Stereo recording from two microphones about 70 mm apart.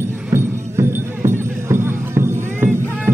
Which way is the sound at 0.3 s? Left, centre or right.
Right.